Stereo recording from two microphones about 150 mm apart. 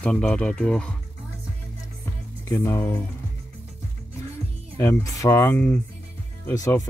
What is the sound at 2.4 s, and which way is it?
Speech, 20° left (ahead or behind).